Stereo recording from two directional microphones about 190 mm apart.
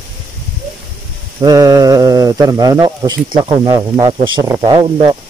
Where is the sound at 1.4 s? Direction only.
20° right (ahead or behind).